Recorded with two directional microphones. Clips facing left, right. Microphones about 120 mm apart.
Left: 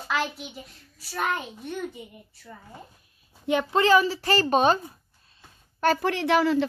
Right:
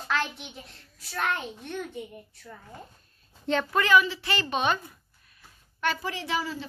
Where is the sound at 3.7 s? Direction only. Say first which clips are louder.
Left 3 dB; 30° left (ahead or behind).